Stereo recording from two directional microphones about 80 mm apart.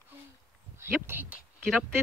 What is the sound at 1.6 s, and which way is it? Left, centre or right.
Speech, centre.